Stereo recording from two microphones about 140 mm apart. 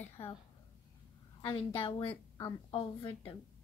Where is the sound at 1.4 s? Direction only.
40° left (ahead or behind).